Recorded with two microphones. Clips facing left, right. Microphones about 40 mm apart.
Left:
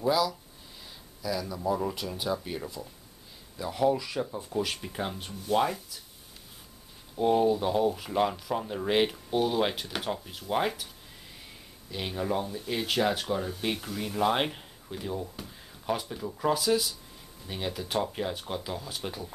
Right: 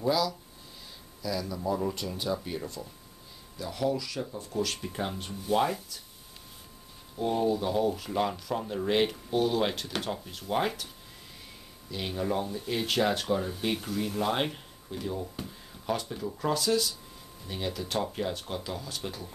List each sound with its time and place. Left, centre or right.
0.0 s speech: centre
4.8 s speech: centre
7.2 s speech: centre
11.9 s speech: centre